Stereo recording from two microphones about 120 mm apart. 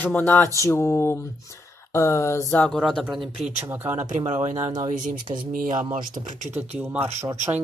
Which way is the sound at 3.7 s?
20° right (ahead or behind).